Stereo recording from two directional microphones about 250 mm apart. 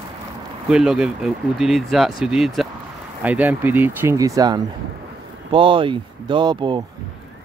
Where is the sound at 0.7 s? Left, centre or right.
Centre.